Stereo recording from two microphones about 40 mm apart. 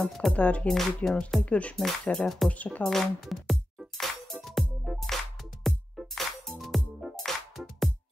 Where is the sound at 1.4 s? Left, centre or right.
Left.